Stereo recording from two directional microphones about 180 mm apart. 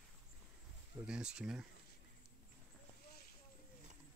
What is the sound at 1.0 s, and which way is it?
Speech, 5° right (ahead or behind).